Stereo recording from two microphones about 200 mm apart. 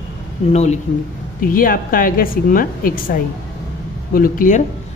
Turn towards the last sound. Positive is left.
turn(degrees=40)  # may be behind; listen again after turning